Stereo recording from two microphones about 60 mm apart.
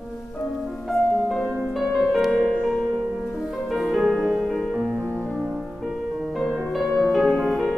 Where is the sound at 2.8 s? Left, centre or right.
Right.